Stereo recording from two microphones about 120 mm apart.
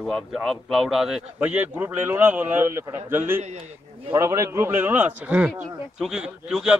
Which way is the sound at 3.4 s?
60° right (ahead or behind).